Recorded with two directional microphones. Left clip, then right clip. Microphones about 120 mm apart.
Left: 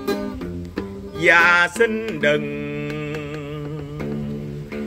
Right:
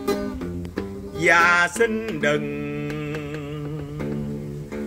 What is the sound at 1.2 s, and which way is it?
Mantra, 15° right (ahead or behind).